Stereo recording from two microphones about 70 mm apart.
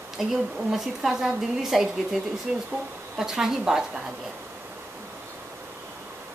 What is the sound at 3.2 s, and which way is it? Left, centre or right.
Speech, centre.